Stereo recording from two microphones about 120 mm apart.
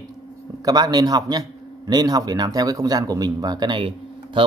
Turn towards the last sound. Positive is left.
turn(degrees=-45)  # may be behind; listen again after turning